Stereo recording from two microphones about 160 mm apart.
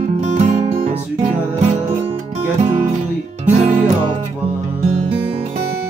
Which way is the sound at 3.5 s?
50° right (ahead or behind).